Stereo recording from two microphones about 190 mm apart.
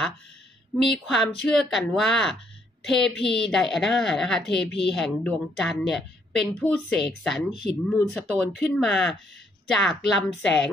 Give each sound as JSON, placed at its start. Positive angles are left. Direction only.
{"t": 0.8, "sound": "a woman's voice", "side_deg": 0}